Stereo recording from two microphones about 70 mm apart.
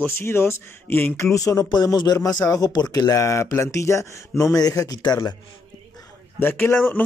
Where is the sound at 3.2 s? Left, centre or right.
Left.